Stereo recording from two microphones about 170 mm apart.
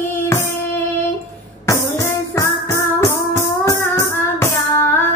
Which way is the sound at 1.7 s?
15° left (ahead or behind).